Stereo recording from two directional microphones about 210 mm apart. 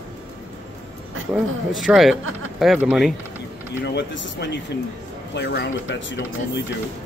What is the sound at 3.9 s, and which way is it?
Speech, 55° left (ahead or behind).